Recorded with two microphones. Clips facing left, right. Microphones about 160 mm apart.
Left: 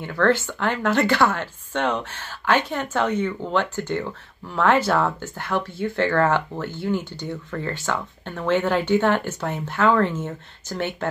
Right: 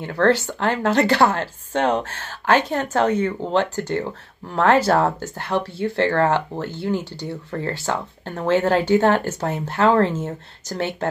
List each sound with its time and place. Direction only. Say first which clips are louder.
0.0 s speech: right 2 dB; 40° right (ahead or behind)